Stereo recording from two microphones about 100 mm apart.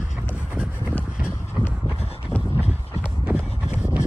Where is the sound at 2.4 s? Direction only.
20° left (ahead or behind).